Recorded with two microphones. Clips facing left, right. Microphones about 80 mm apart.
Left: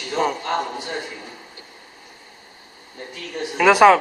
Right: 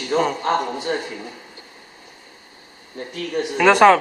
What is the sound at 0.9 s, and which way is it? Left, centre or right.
Speech, right.